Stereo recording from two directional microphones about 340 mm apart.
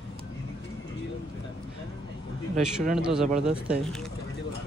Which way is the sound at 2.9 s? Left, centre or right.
Centre.